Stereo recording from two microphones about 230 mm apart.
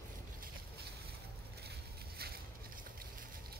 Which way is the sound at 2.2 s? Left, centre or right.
Right.